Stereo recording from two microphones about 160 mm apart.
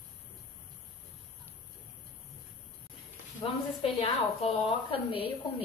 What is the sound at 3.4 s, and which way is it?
A woman's voice, 40° left (ahead or behind).